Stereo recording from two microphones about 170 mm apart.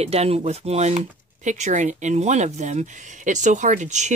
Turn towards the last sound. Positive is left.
turn(degrees=-45)  # may be behind; listen again after turning